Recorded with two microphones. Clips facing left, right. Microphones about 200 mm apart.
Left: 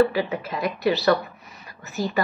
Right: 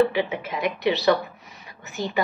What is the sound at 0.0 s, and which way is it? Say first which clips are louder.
Speech: left 1 dB; 20° right (ahead or behind).